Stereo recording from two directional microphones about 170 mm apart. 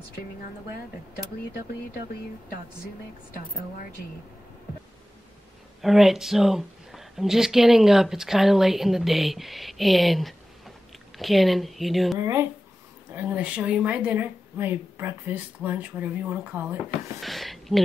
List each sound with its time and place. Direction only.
5.8 s speech: centre (ahead or behind)
12.2 s speech: 20° right (ahead or behind)
17.2 s a sound: centre (ahead or behind)